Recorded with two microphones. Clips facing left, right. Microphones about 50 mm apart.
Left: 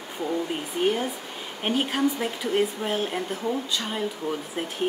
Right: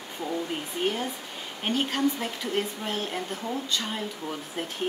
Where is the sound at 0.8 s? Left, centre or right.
Centre.